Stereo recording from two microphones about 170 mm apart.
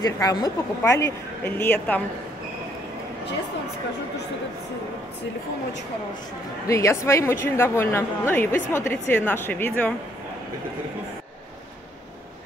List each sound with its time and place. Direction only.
0.0 s a woman's voice: 20° left (ahead or behind)
6.7 s a woman's voice: 15° left (ahead or behind)